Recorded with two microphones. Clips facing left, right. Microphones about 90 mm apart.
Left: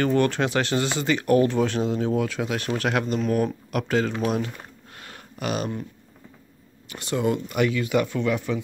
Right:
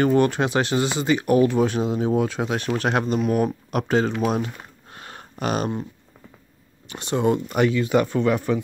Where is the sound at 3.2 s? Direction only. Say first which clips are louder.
Right 2 dB; 15° right (ahead or behind).